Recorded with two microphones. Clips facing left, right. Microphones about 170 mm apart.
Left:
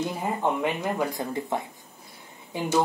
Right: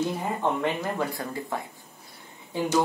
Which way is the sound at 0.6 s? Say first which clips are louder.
Left 1 dB; 15° left (ahead or behind).